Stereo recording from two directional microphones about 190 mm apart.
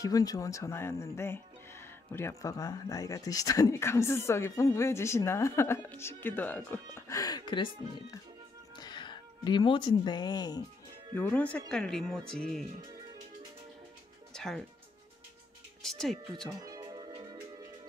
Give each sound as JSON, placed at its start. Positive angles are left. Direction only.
{"t": 0.0, "sound": "speech", "side_deg": 20}
{"t": 11.1, "sound": "speech", "side_deg": 10}
{"t": 14.3, "sound": "music", "side_deg": 5}
{"t": 15.8, "sound": "speech", "side_deg": 0}
{"t": 16.4, "sound": "music", "side_deg": -20}